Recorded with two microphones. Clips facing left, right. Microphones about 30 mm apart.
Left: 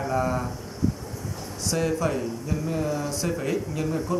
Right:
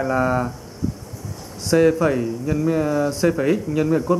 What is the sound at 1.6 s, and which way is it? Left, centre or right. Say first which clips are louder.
Speech: right 9 dB; right.